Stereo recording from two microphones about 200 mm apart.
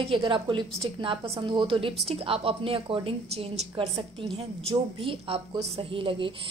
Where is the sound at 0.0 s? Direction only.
25° right (ahead or behind).